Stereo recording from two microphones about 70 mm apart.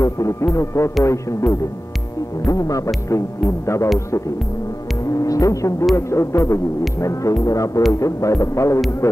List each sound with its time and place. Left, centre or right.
0.0 s music: left
3.1 s music: left
5.1 s music: left